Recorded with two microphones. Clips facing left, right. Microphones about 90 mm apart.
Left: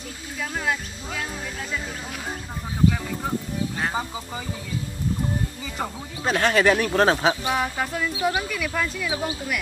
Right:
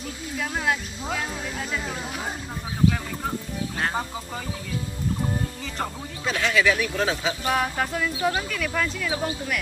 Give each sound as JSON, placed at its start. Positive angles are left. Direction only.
{"t": 0.4, "sound": "speech", "side_deg": -5}
{"t": 6.2, "sound": "speech", "side_deg": 45}
{"t": 7.4, "sound": "speech", "side_deg": 0}